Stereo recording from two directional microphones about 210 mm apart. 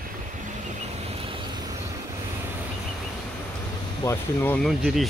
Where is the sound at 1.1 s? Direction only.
25° right (ahead or behind).